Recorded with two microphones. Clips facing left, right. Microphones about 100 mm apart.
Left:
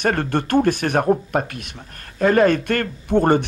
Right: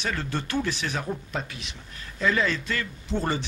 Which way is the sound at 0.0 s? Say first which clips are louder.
Left 10 dB; 55° left (ahead or behind).